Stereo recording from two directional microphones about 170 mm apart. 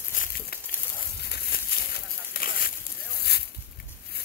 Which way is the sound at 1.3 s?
65° left (ahead or behind).